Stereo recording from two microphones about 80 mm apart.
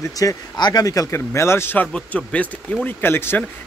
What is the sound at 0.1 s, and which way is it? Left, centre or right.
Speech, left.